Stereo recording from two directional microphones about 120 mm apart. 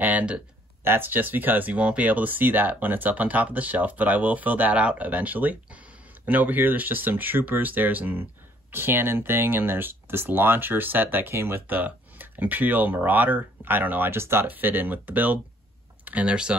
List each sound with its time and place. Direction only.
0.0 s speech: 10° right (ahead or behind)